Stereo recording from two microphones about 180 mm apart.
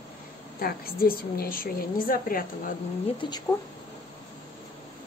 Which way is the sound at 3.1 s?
25° left (ahead or behind).